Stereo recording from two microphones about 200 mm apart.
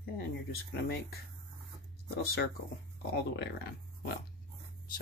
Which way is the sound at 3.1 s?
55° left (ahead or behind).